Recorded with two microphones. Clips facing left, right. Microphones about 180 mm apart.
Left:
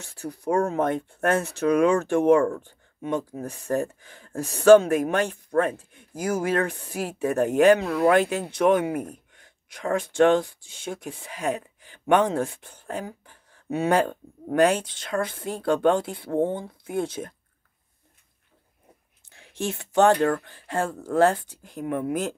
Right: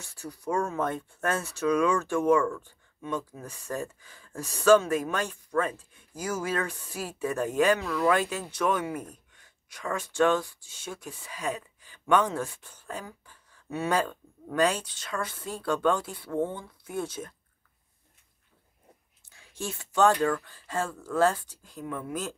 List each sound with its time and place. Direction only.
0.2 s speech: 60° left (ahead or behind)
3.4 s speech: 55° left (ahead or behind)
16.3 s speech: 30° left (ahead or behind)
16.8 s speech: 55° left (ahead or behind)
19.4 s speech: 65° left (ahead or behind)
20.1 s speech: 45° left (ahead or behind)